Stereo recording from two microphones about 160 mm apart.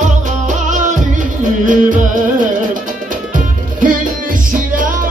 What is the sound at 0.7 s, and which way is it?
Music, 50° right (ahead or behind).